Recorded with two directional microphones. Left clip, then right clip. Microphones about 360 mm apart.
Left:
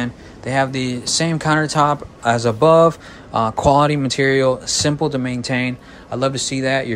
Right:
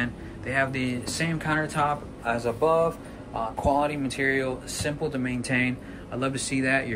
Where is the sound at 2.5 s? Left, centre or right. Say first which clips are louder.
Left 11 dB; left.